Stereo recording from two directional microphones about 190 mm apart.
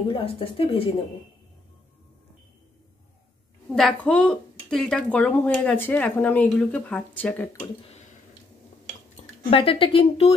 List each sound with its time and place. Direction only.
0.1 s speech: 30° left (ahead or behind)
3.7 s speech: 5° left (ahead or behind)
9.5 s speech: 30° left (ahead or behind)